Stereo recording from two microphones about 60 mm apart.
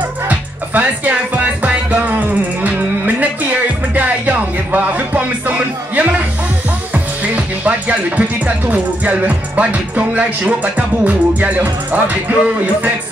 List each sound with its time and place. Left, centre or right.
0.3 s music: right
6.9 s speech: right